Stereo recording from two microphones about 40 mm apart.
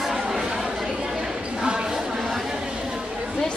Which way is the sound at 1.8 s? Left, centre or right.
Centre.